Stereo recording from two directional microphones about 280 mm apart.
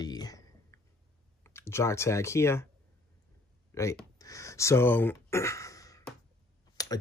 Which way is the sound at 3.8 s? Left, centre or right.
Centre.